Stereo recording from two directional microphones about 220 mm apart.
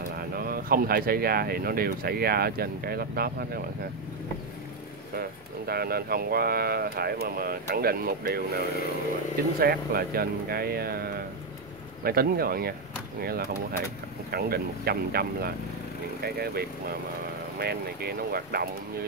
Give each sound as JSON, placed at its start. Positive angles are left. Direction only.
{"t": 0.1, "sound": "speech", "side_deg": -40}
{"t": 5.7, "sound": "speech", "side_deg": -45}